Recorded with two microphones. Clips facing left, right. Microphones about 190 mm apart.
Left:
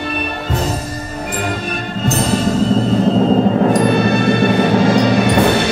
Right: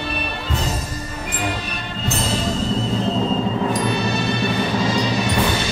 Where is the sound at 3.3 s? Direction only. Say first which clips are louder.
Left 8 dB; 55° left (ahead or behind).